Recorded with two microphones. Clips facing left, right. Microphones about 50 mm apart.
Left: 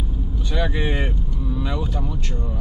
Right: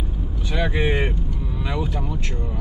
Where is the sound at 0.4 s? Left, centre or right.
Centre.